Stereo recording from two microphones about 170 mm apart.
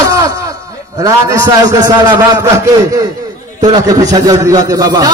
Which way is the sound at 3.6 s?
20° right (ahead or behind).